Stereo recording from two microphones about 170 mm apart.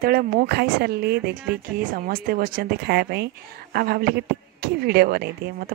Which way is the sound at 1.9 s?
55° right (ahead or behind).